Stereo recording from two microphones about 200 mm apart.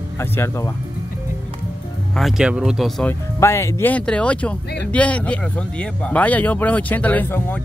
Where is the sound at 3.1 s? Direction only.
10° left (ahead or behind).